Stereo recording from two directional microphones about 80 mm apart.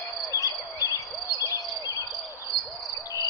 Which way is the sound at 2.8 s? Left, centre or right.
Left.